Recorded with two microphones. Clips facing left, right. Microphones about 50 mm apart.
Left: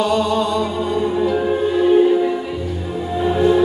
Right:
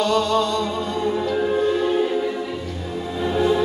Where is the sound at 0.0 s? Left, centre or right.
Centre.